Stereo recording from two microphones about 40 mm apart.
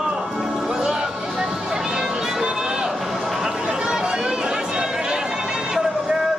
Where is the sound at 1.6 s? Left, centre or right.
Centre.